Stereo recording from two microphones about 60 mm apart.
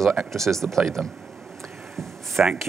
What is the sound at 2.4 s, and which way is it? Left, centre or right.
Speech, centre.